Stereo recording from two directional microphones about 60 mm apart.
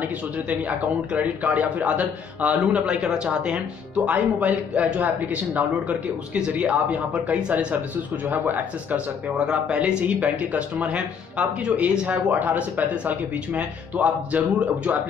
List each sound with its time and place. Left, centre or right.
0.0 s a man's voice: right
2.7 s a man's voice: centre